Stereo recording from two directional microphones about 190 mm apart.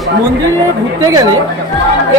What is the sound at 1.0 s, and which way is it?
Speech, 20° right (ahead or behind).